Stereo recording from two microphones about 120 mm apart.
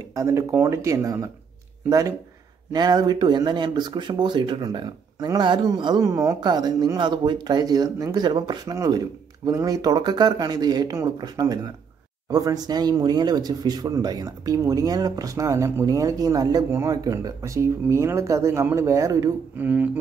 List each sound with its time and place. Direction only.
0.1 s speech: 25° right (ahead or behind)
19.6 s didgeridoo: 15° right (ahead or behind)